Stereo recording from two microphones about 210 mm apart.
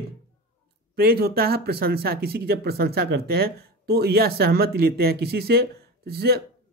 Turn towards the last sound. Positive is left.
turn(degrees=-50)  # may be behind; listen again after turning